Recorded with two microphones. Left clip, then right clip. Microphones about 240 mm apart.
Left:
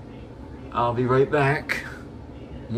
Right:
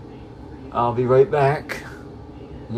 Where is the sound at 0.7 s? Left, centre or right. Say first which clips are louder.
Right 4 dB; right.